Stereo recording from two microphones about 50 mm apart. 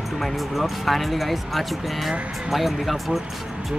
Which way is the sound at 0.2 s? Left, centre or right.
Centre.